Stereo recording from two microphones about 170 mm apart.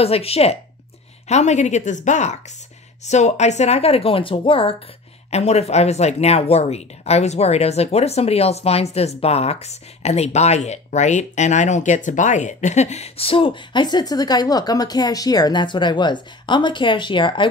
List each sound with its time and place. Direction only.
0.0 s speech: 35° left (ahead or behind)